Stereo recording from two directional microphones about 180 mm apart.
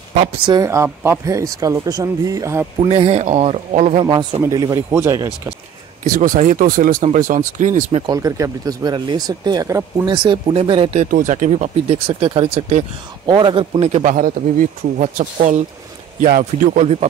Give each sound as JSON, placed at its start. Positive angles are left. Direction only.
{"t": 0.2, "sound": "speech", "side_deg": -25}
{"t": 2.9, "sound": "speech", "side_deg": -35}
{"t": 4.0, "sound": "speech", "side_deg": -25}
{"t": 6.1, "sound": "speech", "side_deg": -50}
{"t": 8.1, "sound": "speech", "side_deg": -20}
{"t": 11.1, "sound": "speech", "side_deg": -45}
{"t": 13.3, "sound": "speech", "side_deg": -25}
{"t": 14.0, "sound": "speech", "side_deg": -50}
{"t": 16.8, "sound": "speech", "side_deg": -35}